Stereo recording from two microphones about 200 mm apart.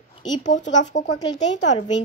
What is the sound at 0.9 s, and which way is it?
Speech, 35° left (ahead or behind).